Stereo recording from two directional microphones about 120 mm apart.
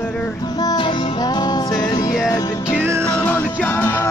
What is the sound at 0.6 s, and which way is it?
Music, 35° left (ahead or behind).